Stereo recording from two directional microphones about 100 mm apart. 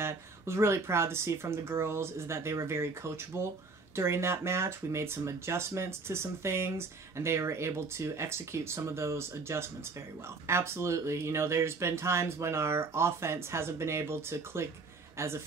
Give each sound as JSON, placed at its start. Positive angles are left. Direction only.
{"t": 0.0, "sound": "speech", "side_deg": -25}